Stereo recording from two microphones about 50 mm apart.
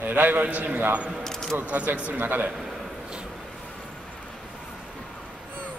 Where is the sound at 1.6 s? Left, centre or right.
Right.